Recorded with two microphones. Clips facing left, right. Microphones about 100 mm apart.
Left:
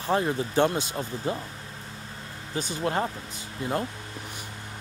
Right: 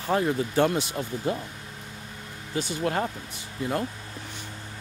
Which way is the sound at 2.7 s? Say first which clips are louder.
Even; 30° left (ahead or behind).